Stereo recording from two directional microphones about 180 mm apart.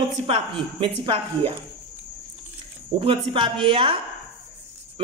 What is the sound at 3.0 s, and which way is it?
Speech, 30° right (ahead or behind).